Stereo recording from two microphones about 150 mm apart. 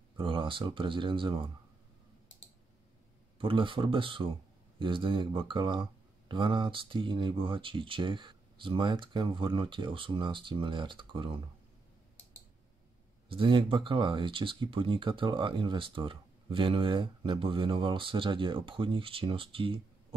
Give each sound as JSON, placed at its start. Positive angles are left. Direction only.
{"t": 0.2, "sound": "speech", "side_deg": -35}
{"t": 3.3, "sound": "speech", "side_deg": -35}
{"t": 13.3, "sound": "speech", "side_deg": -35}